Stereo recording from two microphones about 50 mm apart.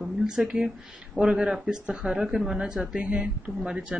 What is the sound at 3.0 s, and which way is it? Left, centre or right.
Speech, right.